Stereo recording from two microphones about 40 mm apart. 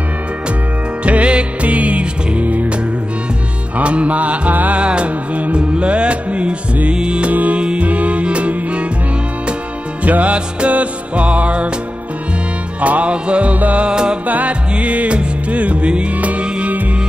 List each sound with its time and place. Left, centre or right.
1.0 s music: right
3.7 s music: right
4.7 s music: right
7.3 s music: right
10.0 s music: right
12.8 s music: right
13.8 s music: right
14.2 s music: right